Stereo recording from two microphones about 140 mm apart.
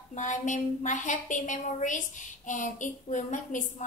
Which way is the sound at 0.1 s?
65° left (ahead or behind).